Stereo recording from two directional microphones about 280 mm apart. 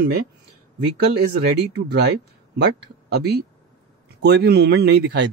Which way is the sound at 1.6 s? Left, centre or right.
Right.